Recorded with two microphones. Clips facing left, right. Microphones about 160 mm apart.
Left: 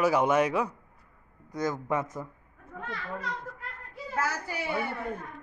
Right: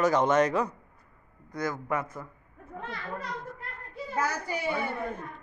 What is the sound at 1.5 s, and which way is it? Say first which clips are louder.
Speech: left 2 dB; 20° left (ahead or behind).